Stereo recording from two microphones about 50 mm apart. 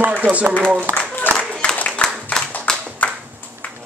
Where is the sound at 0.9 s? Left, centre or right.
Left.